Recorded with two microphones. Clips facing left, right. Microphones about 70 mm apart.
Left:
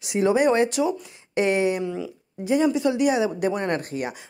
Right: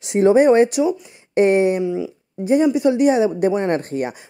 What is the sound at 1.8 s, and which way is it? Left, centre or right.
Speech, centre.